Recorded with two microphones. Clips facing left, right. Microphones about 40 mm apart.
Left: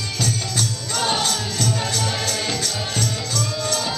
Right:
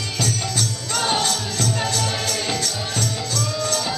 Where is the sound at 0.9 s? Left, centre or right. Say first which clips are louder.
Right 1 dB; centre.